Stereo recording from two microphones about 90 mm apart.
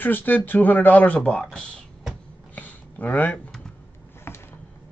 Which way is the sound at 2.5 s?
20° left (ahead or behind).